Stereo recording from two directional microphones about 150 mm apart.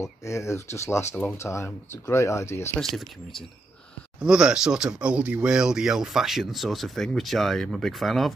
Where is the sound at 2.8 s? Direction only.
Centre (ahead or behind).